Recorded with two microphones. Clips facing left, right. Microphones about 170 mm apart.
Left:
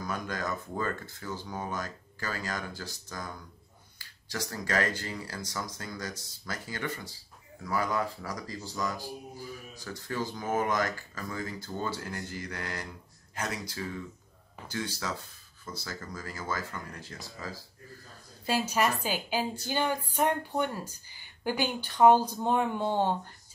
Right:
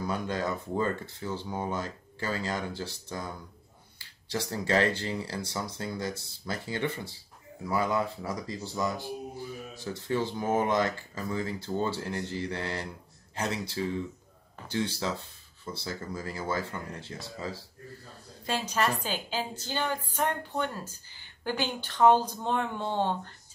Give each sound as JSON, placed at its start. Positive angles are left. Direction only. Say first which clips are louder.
{"t": 0.0, "sound": "speech", "louder": "right 4 dB", "side_deg": -30}
{"t": 18.5, "sound": "a woman's voice", "louder": "left 1 dB", "side_deg": 10}